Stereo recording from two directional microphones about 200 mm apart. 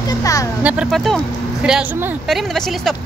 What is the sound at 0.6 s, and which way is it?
Speech, 5° right (ahead or behind).